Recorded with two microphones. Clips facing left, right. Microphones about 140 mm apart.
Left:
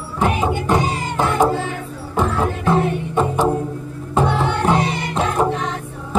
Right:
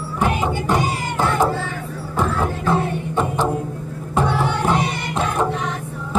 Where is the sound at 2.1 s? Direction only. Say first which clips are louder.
Left 2 dB; 15° left (ahead or behind).